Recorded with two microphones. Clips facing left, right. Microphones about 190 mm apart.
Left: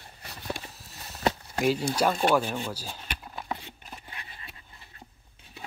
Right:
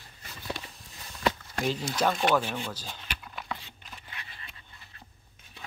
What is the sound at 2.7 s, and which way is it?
Speech, 10° left (ahead or behind).